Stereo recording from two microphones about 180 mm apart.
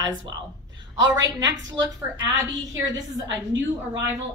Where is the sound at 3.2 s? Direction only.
90° right.